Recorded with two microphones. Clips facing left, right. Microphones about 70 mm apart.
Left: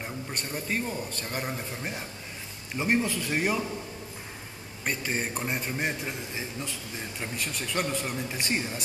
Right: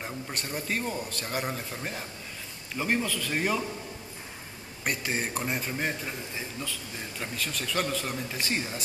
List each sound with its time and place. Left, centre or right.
0.0 s speech: centre
1.5 s speech: centre
4.8 s speech: centre
5.8 s speech: centre